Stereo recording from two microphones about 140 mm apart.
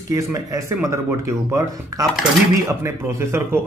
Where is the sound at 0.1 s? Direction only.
25° right (ahead or behind).